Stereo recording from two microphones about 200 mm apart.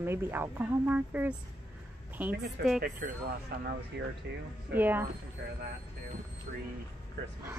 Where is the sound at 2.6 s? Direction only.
55° right (ahead or behind).